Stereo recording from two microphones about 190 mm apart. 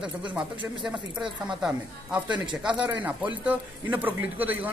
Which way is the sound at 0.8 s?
5° right (ahead or behind).